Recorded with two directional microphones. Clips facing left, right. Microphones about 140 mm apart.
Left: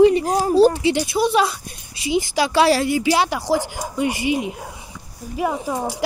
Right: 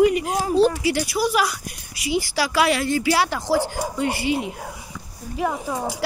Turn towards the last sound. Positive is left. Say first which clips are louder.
# left 2 dB
turn(degrees=5)  # may be behind; listen again after turning